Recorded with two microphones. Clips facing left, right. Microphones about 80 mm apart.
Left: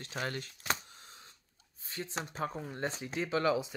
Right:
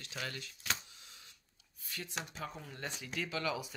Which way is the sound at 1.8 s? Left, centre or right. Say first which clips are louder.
Left 4 dB; left.